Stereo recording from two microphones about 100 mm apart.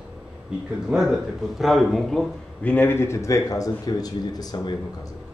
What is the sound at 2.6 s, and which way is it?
A man's voice, 15° left (ahead or behind).